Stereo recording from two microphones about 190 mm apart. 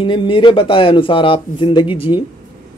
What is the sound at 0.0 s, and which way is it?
Speech, 25° left (ahead or behind).